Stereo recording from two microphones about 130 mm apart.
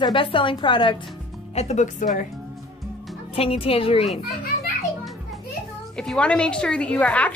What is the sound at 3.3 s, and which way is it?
Speech, 45° left (ahead or behind).